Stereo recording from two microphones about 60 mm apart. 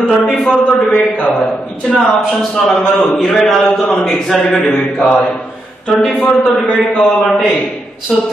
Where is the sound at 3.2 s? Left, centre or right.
Centre.